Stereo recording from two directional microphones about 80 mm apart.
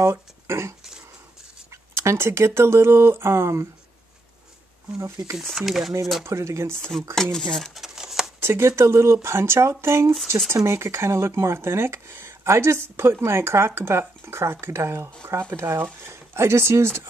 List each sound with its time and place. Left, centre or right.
0.0 s speech: right
4.9 s speech: right
5.4 s speech: centre
6.2 s speech: right
7.3 s a sound: centre
8.4 s speech: right